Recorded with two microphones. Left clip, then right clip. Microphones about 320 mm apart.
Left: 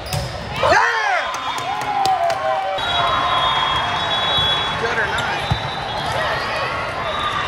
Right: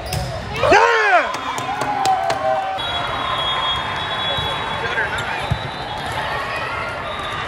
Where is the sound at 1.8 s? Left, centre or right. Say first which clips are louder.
Even; centre.